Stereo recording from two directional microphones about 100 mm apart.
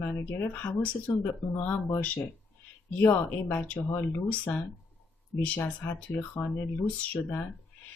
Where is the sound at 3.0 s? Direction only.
20° left (ahead or behind).